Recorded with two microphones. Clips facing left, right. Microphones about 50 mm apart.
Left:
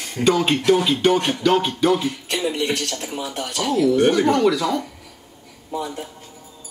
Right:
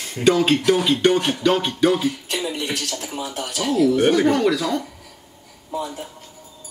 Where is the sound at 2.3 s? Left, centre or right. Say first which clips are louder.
Left 2 dB; left.